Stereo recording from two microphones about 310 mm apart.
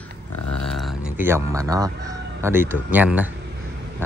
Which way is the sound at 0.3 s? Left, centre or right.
Left.